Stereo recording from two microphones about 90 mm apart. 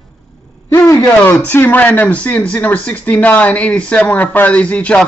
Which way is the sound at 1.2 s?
25° left (ahead or behind).